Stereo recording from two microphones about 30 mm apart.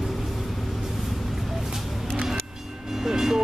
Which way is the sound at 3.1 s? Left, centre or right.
Centre.